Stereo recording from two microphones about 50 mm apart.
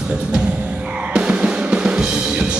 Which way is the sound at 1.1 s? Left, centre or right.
Right.